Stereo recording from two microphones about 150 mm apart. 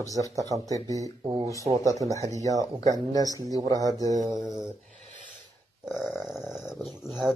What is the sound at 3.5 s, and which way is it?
Speech, 25° right (ahead or behind).